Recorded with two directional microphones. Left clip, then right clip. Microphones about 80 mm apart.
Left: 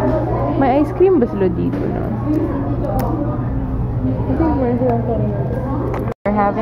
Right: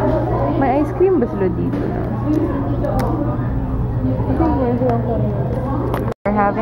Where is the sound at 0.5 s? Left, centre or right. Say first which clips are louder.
Left 3 dB; left.